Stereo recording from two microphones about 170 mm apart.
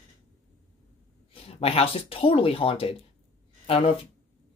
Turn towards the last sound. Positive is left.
turn(degrees=35)  # may be behind; listen again after turning